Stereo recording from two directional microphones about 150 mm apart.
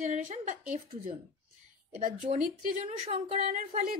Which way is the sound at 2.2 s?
65° right (ahead or behind).